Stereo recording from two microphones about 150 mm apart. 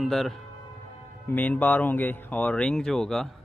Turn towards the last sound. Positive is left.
turn(degrees=5)  # may be behind; listen again after turning